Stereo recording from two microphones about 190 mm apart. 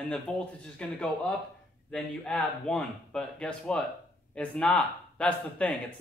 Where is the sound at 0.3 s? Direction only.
10° left (ahead or behind).